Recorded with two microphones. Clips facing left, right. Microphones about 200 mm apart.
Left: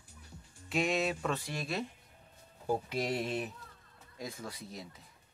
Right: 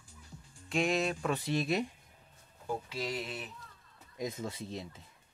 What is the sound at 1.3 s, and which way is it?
Speech, 20° right (ahead or behind).